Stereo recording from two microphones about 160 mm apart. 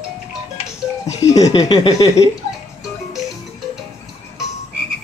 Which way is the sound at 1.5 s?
25° left (ahead or behind).